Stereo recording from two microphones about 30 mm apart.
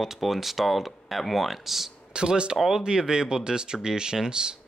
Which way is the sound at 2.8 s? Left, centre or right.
Right.